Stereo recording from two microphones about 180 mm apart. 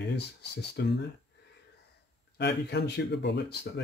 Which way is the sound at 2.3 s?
70° left (ahead or behind).